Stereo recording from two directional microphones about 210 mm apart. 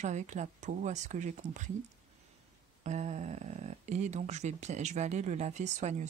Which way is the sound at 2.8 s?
35° right (ahead or behind).